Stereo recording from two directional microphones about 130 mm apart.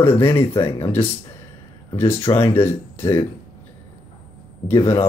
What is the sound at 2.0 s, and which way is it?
Speech, 20° left (ahead or behind).